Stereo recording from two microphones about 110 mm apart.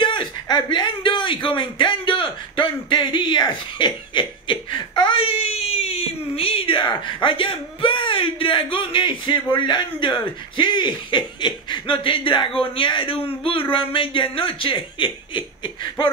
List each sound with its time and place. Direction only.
0.0 s a man's voice: 45° left (ahead or behind)